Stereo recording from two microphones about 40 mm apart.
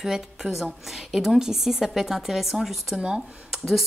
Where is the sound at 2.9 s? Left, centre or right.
Right.